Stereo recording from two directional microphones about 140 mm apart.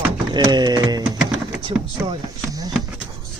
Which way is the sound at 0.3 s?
30° right (ahead or behind).